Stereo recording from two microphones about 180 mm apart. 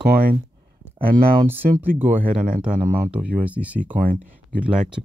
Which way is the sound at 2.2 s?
50° right (ahead or behind).